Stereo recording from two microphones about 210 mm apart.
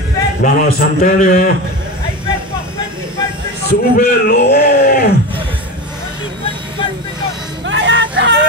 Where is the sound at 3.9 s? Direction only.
45° left (ahead or behind).